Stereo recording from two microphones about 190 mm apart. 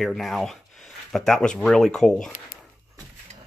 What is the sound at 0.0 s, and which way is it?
Speech, centre (ahead or behind).